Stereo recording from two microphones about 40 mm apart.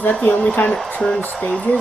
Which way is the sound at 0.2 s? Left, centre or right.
Left.